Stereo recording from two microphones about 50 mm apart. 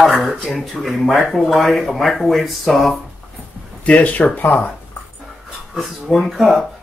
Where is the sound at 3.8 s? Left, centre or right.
Left.